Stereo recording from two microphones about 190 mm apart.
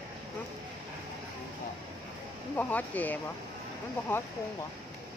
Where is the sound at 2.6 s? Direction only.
10° left (ahead or behind).